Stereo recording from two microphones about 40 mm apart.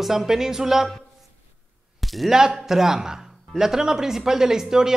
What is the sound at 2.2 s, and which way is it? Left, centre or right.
Speech, centre.